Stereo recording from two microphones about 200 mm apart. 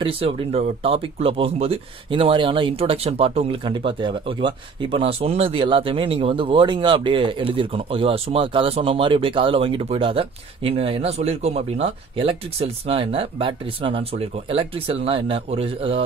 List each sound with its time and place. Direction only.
0.0 s speech: 25° right (ahead or behind)